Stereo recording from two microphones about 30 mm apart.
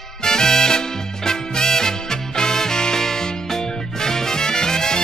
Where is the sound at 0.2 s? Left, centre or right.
Left.